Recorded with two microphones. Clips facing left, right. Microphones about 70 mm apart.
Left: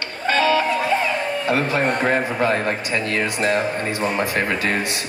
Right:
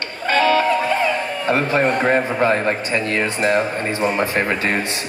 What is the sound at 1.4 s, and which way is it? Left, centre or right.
Speech, right.